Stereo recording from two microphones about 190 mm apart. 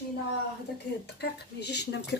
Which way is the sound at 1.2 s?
60° left (ahead or behind).